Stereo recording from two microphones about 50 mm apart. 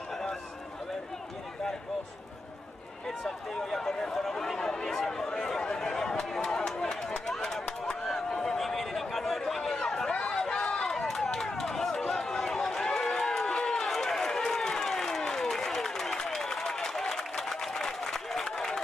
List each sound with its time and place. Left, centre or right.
3.1 s speech: centre
3.7 s chatter: centre
7.8 s a sound: centre
8.5 s chatter: centre
10.1 s a sound: centre
11.2 s run: centre